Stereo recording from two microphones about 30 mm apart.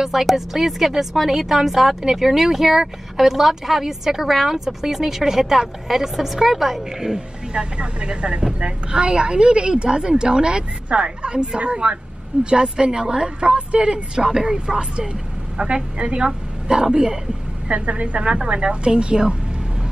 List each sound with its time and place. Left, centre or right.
0.0 s a woman's voice: centre
7.5 s a woman's voice: right
10.9 s a woman's voice: right
13.4 s a woman's voice: right
15.5 s a woman's voice: right
17.6 s a woman's voice: right